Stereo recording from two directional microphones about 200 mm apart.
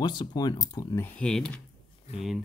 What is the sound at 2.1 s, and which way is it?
Speech, 30° left (ahead or behind).